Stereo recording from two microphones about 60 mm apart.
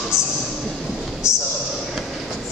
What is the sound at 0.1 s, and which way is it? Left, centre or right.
Speech, centre.